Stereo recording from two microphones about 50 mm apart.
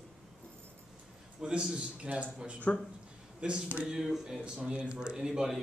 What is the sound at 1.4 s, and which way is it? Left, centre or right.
A man's voice, centre.